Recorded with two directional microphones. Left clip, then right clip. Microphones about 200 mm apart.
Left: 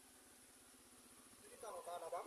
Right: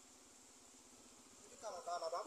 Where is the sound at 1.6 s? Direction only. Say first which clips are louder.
Right 4 dB; 20° right (ahead or behind).